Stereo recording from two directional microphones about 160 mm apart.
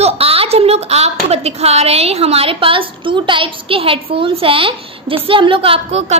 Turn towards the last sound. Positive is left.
turn(degrees=-40)  # may be behind; listen again after turning